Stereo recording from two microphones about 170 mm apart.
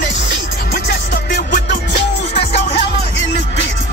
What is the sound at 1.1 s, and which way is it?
Music, 75° left (ahead or behind).